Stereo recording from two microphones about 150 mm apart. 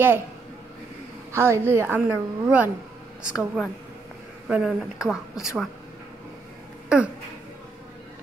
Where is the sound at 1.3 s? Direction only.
15° right (ahead or behind).